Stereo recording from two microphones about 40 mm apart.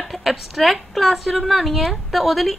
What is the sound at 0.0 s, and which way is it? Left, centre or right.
A woman's voice, centre.